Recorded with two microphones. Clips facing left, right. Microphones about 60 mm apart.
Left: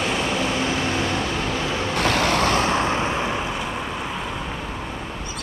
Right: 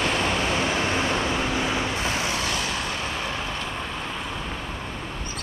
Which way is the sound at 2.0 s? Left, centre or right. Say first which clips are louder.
Left 7 dB; left.